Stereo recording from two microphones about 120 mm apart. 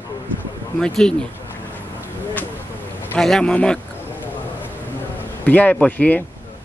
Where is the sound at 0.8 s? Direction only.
5° left (ahead or behind).